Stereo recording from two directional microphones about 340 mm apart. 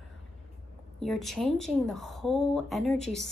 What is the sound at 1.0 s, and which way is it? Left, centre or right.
A woman's voice, centre.